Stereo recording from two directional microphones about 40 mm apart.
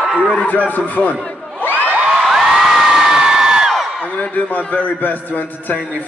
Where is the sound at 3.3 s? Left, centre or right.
Centre.